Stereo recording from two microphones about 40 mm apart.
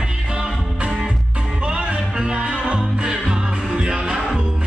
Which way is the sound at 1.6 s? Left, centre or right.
Right.